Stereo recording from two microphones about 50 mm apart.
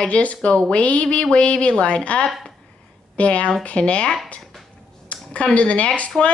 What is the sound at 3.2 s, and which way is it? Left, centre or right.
Speech, left.